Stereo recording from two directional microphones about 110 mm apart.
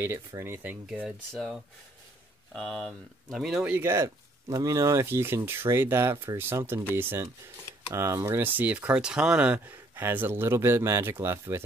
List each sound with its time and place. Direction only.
0.0 s speech: 20° right (ahead or behind); by 1.6 s centre (ahead or behind)
2.5 s speech: 10° left (ahead or behind)
3.3 s speech: centre (ahead or behind)
3.7 s speech: 25° right (ahead or behind)